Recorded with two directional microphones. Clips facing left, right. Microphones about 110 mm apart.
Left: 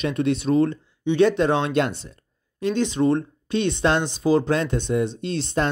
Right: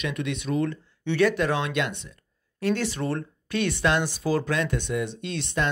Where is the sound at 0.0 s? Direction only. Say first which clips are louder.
Left 7 dB; 35° left (ahead or behind).